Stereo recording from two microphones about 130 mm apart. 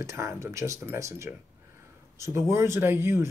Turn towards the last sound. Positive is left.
turn(degrees=-20)  # may be behind; listen again after turning